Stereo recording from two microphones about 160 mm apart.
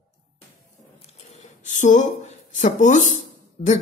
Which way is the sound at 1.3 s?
50° left (ahead or behind).